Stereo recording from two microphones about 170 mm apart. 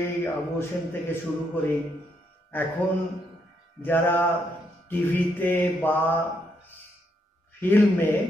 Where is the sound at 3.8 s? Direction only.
10° left (ahead or behind).